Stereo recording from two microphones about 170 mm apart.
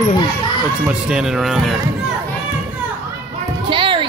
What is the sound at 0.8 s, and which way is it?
Speech, 5° right (ahead or behind).